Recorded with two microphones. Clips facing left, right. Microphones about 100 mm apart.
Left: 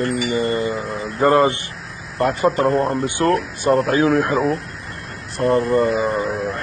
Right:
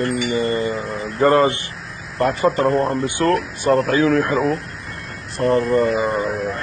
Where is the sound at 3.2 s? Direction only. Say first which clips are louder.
Even; 5° left (ahead or behind).